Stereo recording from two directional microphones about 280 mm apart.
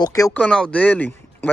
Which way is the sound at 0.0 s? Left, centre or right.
Centre.